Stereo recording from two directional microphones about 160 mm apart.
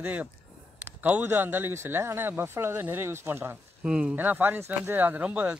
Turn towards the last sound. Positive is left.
turn(degrees=-10)  # may be behind; listen again after turning